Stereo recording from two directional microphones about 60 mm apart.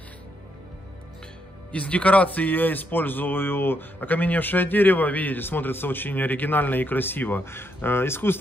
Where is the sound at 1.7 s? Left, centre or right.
Left.